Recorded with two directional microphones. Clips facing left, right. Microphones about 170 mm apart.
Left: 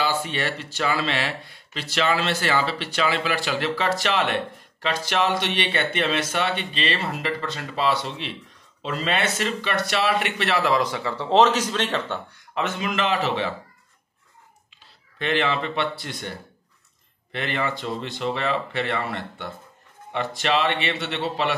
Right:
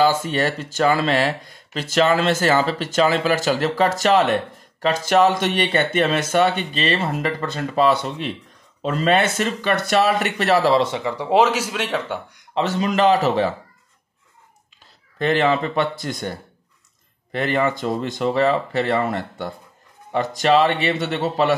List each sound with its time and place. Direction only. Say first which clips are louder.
0.0 s speech: right 7 dB; 45° right (ahead or behind); by 12.4 s 10° right (ahead or behind)
12.5 s speech: right 6 dB; 35° right (ahead or behind)
15.1 s speech: right 5 dB; 40° right (ahead or behind)